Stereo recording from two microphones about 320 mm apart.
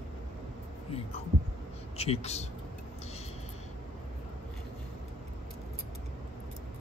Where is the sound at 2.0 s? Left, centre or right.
Centre.